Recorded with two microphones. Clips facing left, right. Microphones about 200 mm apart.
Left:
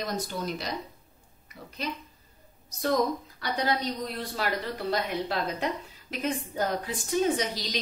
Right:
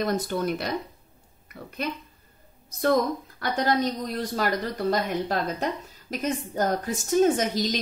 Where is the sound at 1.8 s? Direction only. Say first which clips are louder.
Right 4 dB; 55° right (ahead or behind).